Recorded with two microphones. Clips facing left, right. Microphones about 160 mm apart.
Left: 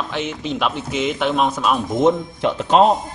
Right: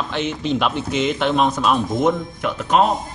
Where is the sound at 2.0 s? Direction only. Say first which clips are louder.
Left 3 dB; 30° left (ahead or behind).